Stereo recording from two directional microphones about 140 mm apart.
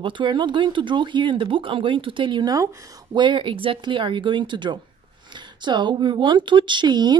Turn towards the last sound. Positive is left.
turn(degrees=-30)  # may be behind; listen again after turning